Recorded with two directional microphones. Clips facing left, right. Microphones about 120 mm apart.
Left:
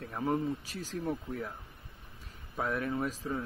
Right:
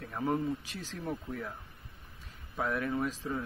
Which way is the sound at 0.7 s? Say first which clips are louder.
Left 4 dB; 40° left (ahead or behind).